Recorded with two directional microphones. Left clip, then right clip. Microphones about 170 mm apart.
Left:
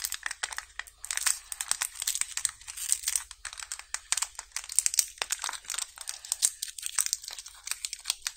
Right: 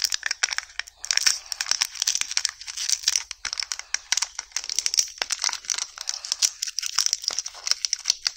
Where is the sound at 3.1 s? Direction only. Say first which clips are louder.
Right 10 dB; 15° right (ahead or behind).